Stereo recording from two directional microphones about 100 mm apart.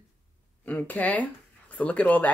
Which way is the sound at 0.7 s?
15° left (ahead or behind).